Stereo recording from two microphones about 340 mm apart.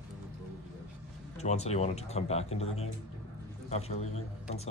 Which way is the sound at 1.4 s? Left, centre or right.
Centre.